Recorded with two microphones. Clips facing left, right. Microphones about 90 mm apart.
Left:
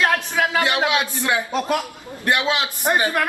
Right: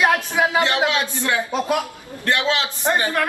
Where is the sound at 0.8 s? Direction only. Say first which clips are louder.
Even; 15° left (ahead or behind).